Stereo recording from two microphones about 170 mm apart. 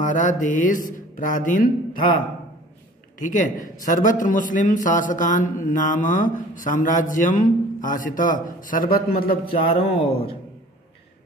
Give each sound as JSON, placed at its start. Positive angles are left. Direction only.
{"t": 0.0, "sound": "a man's voice", "side_deg": 50}
{"t": 3.2, "sound": "a man's voice", "side_deg": 50}
{"t": 9.3, "sound": "speech", "side_deg": 30}